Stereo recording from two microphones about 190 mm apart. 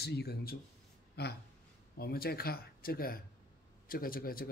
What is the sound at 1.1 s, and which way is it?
Speech, 60° left (ahead or behind).